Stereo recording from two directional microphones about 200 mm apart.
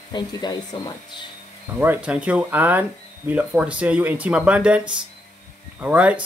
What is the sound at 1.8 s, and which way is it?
Speech, 5° right (ahead or behind).